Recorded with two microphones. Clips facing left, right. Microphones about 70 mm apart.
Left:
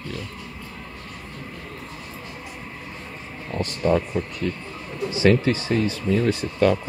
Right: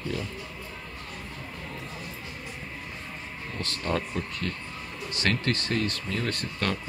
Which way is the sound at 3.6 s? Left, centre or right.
Centre.